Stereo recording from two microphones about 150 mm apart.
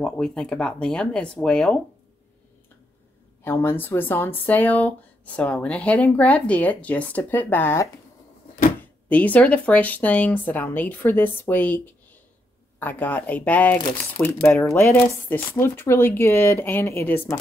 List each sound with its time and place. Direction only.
0.0 s speech: 5° left (ahead or behind)
3.4 s speech: 15° left (ahead or behind)
9.1 s speech: 10° left (ahead or behind)
13.7 s speech: 30° left (ahead or behind)
14.5 s speech: 15° left (ahead or behind)